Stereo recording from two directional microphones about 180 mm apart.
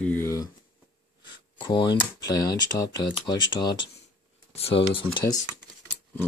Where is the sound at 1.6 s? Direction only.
25° left (ahead or behind).